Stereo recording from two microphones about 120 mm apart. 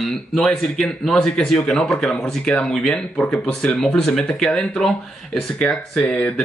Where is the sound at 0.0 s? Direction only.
Centre (ahead or behind).